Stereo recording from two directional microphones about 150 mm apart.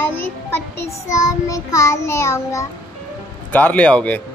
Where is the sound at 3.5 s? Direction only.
10° left (ahead or behind).